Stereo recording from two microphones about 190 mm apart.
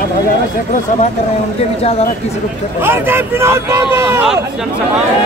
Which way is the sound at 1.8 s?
30° left (ahead or behind).